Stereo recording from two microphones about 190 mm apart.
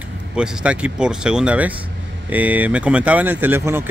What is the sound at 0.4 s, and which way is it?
Speech, 5° right (ahead or behind).